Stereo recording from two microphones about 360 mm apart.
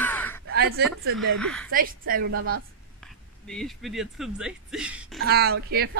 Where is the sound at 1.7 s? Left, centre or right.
Right.